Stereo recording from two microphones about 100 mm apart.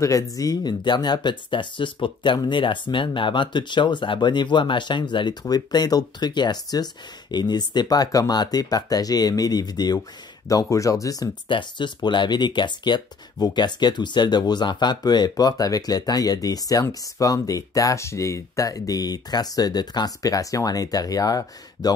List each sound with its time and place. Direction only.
0.0 s speech: 35° left (ahead or behind)
11.4 s speech: 50° left (ahead or behind)